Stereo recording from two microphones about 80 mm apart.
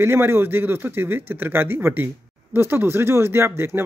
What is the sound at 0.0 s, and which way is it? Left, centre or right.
Speech, right.